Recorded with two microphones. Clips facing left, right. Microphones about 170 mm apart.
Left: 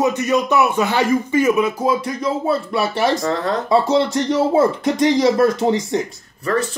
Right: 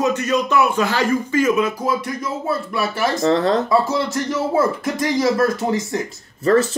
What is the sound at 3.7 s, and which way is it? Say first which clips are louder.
Speech: left 3 dB; 25° left (ahead or behind).